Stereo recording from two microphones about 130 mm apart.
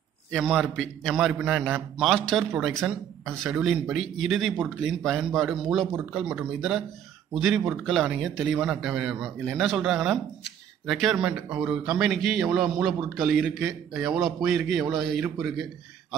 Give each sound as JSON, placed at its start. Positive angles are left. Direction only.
{"t": 0.4, "sound": "a man's voice", "side_deg": -5}
{"t": 5.9, "sound": "a man's voice", "side_deg": -15}